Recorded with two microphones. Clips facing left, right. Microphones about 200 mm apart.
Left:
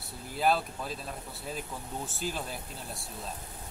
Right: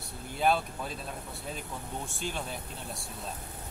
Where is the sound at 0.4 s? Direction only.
Centre (ahead or behind).